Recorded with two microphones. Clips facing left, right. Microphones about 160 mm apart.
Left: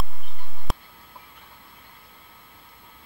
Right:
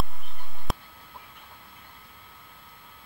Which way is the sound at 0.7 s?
Centre (ahead or behind).